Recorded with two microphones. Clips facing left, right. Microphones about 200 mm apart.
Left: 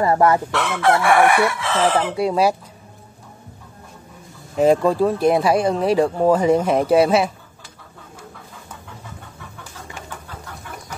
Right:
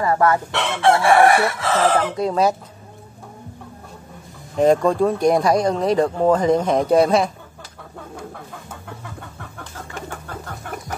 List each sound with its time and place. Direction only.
0.0 s chicken: 25° left (ahead or behind)
0.5 s chicken: 25° right (ahead or behind)
2.0 s speech: 10° left (ahead or behind)
4.6 s speech: 5° left (ahead or behind)